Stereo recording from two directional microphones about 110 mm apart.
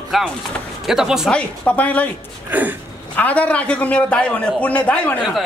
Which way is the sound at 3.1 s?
15° left (ahead or behind).